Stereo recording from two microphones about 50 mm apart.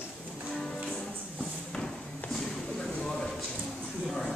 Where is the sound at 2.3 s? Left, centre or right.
Centre.